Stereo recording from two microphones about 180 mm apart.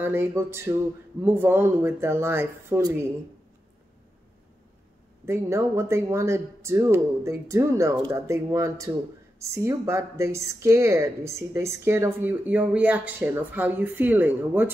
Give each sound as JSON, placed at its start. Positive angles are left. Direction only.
{"t": 0.0, "sound": "a woman's voice", "side_deg": -10}
{"t": 5.2, "sound": "a woman's voice", "side_deg": -15}